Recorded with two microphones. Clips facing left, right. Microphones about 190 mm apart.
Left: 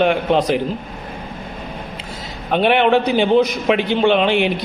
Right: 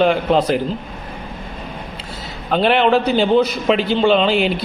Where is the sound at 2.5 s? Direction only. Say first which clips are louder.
Even; centre (ahead or behind).